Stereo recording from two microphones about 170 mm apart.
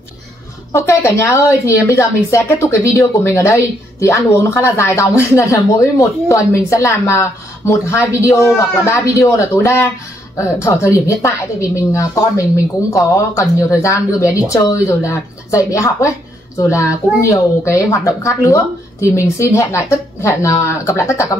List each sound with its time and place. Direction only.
0.7 s a woman's voice: 15° left (ahead or behind)